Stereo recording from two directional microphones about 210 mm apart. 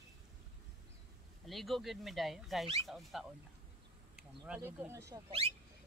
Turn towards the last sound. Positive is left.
turn(degrees=-15)  # may be behind; listen again after turning